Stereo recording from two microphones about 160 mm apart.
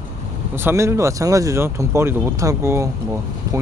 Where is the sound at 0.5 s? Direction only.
15° right (ahead or behind).